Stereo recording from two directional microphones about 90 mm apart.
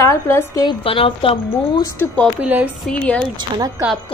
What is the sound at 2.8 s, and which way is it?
Speech, 10° left (ahead or behind).